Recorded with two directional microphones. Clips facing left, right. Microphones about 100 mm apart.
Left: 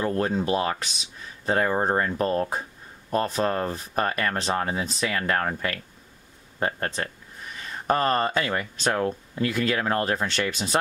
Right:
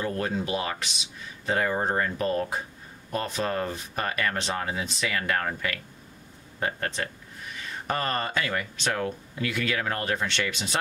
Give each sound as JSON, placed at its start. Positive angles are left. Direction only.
{"t": 0.0, "sound": "speech", "side_deg": 35}